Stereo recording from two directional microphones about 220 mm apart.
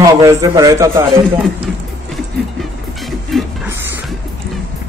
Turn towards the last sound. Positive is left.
turn(degrees=-10)  # may be behind; listen again after turning